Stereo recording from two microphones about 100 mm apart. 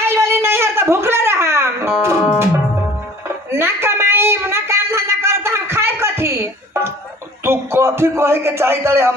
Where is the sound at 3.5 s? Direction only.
25° right (ahead or behind).